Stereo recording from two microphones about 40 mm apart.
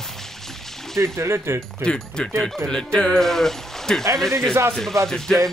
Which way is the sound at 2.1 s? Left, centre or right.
Left.